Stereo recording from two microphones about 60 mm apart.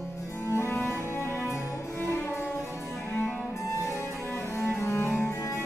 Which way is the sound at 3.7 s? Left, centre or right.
Left.